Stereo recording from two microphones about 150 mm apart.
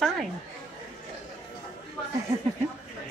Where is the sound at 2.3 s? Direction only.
20° right (ahead or behind).